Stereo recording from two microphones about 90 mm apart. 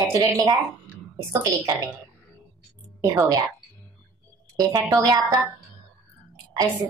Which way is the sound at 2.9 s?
45° right (ahead or behind).